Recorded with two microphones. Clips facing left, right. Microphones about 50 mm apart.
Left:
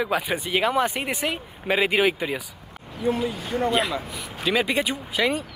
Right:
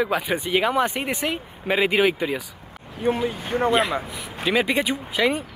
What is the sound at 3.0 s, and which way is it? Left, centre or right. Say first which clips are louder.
Speech: right 2 dB; right.